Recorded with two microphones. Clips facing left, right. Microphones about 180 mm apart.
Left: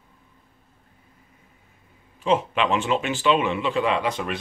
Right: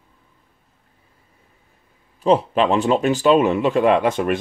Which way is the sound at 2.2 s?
35° right (ahead or behind).